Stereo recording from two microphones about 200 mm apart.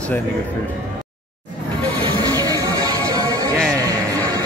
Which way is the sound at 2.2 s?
20° right (ahead or behind).